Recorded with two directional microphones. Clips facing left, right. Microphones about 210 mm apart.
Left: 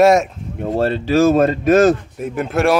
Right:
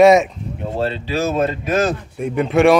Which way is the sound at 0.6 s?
45° left (ahead or behind).